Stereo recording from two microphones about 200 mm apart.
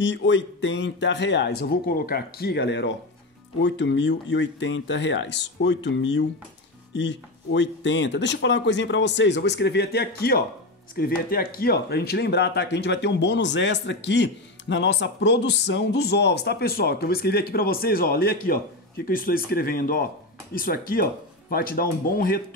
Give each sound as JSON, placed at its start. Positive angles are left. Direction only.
{"t": 0.0, "sound": "speech", "side_deg": 65}